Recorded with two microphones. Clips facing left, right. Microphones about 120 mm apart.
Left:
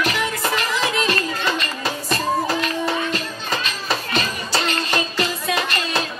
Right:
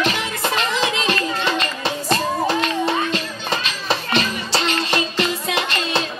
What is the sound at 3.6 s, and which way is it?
Music, 40° left (ahead or behind).